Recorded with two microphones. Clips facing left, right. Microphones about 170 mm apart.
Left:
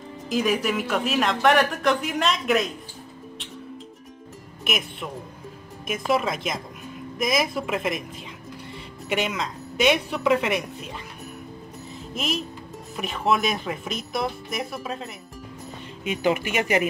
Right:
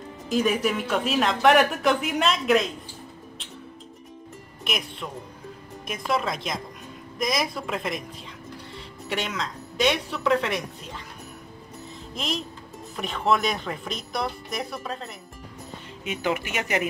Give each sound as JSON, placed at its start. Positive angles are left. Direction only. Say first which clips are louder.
{"t": 0.3, "sound": "speech", "louder": "even", "side_deg": 0}
{"t": 4.6, "sound": "speech", "louder": "left 2 dB", "side_deg": 5}
{"t": 9.1, "sound": "a woman's voice", "louder": "left 3 dB", "side_deg": 10}
{"t": 12.9, "sound": "speech", "louder": "even", "side_deg": 5}
{"t": 16.0, "sound": "a woman's voice", "louder": "left 4 dB", "side_deg": 20}